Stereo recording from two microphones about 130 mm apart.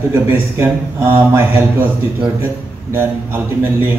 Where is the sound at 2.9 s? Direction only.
20° right (ahead or behind).